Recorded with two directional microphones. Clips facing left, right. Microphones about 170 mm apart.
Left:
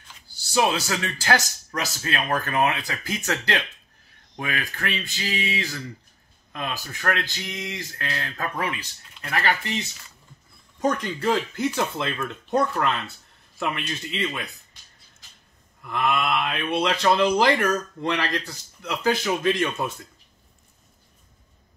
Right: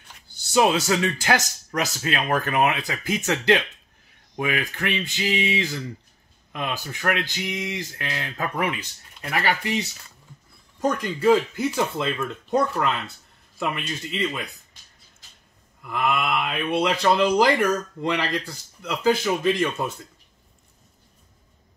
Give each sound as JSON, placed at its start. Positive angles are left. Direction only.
{"t": 0.5, "sound": "speech", "side_deg": -25}
{"t": 10.8, "sound": "speech", "side_deg": -5}
{"t": 15.8, "sound": "speech", "side_deg": -5}